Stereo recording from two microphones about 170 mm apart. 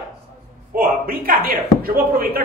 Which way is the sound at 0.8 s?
60° right (ahead or behind).